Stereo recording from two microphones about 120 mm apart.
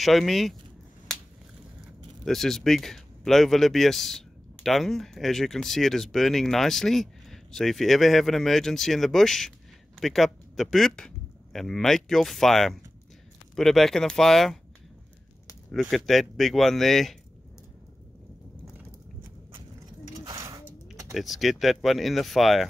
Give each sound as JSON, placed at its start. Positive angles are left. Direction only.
{"t": 0.0, "sound": "speech", "side_deg": 0}
{"t": 2.2, "sound": "speech", "side_deg": 5}
{"t": 15.7, "sound": "speech", "side_deg": 0}
{"t": 20.2, "sound": "a sound", "side_deg": -30}
{"t": 21.1, "sound": "speech", "side_deg": 0}